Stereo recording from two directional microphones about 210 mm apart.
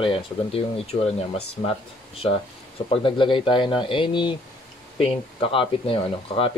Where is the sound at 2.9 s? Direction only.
25° left (ahead or behind).